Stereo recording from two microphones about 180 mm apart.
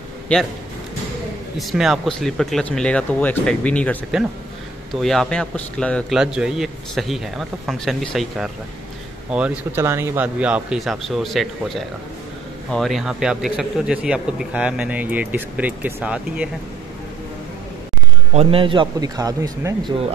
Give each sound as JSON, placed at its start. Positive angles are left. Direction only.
{"t": 0.3, "sound": "speech", "side_deg": 5}
{"t": 1.6, "sound": "a man's voice", "side_deg": 0}
{"t": 5.0, "sound": "a man's voice", "side_deg": 0}
{"t": 18.3, "sound": "a man's voice", "side_deg": -35}